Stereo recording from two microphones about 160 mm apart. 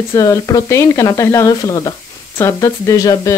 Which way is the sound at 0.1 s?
20° left (ahead or behind).